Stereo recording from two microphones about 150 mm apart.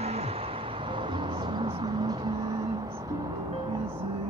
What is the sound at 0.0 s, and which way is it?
Vehicle, 40° right (ahead or behind).